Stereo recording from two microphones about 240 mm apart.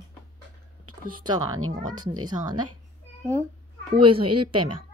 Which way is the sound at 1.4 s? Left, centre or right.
Right.